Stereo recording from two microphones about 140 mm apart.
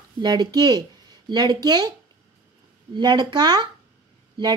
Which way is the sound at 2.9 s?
30° right (ahead or behind).